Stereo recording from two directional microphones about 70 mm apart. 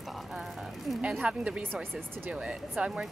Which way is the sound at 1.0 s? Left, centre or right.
Centre.